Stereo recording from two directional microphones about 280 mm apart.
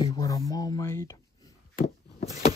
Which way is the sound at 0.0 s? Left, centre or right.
Centre.